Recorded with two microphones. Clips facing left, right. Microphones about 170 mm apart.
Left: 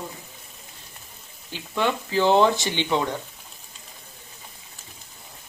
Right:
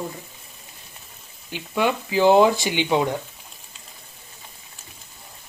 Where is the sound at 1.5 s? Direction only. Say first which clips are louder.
Right 2 dB; 10° right (ahead or behind).